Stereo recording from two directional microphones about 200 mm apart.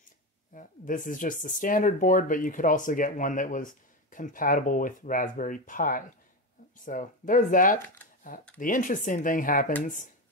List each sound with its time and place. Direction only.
0.6 s speech: 40° left (ahead or behind)